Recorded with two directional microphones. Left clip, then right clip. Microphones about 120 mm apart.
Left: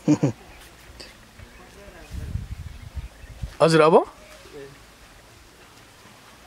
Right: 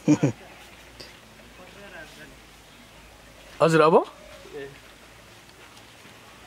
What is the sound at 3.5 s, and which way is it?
Speech, 25° left (ahead or behind).